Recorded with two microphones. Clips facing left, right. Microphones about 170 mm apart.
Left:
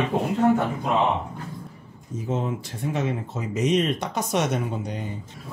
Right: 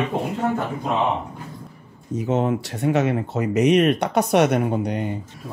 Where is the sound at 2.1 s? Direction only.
70° right (ahead or behind).